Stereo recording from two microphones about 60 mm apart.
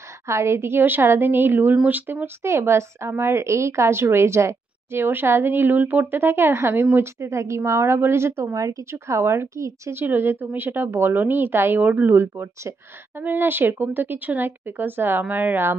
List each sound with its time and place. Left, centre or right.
0.3 s speech: right
7.2 s speech: right
8.5 s a woman's voice: right
11.8 s speech: right
12.1 s speech: right